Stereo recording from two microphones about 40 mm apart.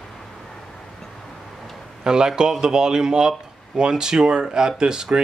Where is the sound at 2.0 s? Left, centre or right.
Centre.